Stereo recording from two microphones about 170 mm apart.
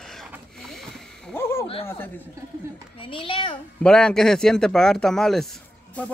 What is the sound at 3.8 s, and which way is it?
A man's voice, 5° left (ahead or behind).